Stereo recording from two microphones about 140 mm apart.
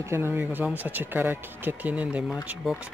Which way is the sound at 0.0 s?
20° right (ahead or behind).